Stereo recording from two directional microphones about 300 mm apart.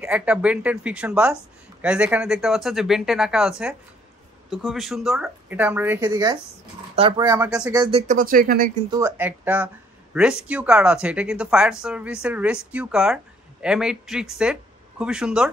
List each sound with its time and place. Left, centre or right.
0.0 s speech: centre
7.8 s speech: right
8.9 s speech: centre